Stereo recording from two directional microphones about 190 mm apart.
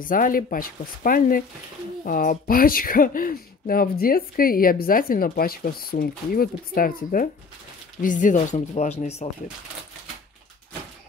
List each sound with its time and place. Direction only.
0.0 s speech: 45° left (ahead or behind)